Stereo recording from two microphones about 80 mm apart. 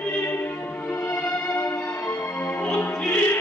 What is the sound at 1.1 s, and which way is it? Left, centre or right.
Music, left.